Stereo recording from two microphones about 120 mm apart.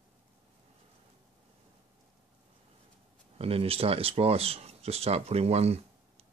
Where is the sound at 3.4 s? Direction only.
55° right (ahead or behind).